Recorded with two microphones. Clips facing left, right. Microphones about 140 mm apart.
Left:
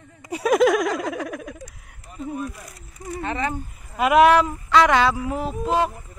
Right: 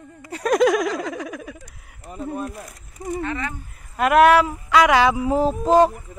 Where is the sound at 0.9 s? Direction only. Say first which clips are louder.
Left 1 dB; centre (ahead or behind).